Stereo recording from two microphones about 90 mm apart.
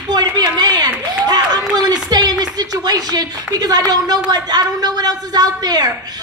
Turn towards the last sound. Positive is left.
turn(degrees=-45)  # may be behind; listen again after turning